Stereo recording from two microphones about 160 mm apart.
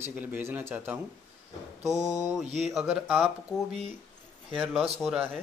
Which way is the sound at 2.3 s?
Centre (ahead or behind).